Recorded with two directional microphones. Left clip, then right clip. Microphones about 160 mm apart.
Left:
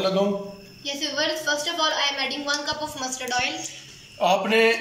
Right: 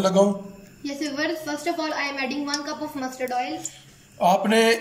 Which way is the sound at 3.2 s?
50° right (ahead or behind).